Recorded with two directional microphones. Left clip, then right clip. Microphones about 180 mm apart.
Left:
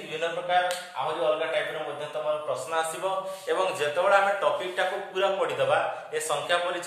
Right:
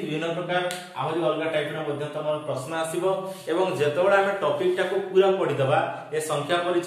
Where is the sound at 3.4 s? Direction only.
25° left (ahead or behind).